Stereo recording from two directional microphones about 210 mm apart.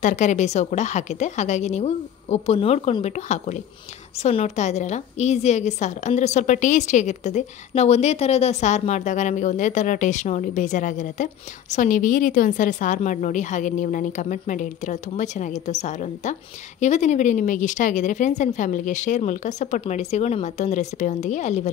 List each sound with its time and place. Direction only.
0.0 s a woman's voice: 35° left (ahead or behind)